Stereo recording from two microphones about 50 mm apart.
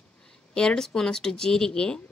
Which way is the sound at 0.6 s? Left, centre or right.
Centre.